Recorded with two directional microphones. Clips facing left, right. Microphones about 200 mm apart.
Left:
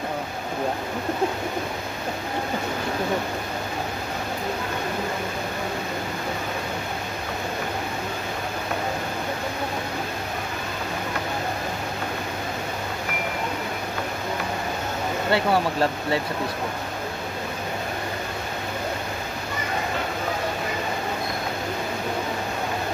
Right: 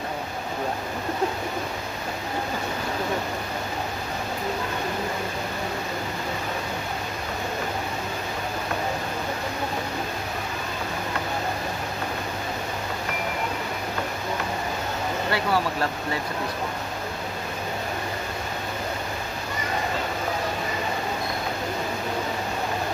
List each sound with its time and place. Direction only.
15.3 s speech: 25° left (ahead or behind)